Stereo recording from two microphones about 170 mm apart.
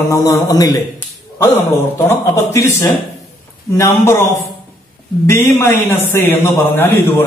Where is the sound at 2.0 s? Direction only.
15° left (ahead or behind).